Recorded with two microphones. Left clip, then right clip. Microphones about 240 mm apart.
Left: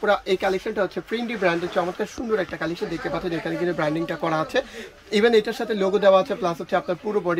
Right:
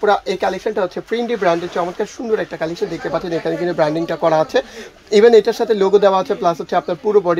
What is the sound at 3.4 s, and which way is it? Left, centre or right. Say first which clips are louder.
Speech: right 8 dB; right.